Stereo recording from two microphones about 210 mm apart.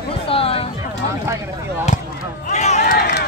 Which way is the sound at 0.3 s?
25° left (ahead or behind).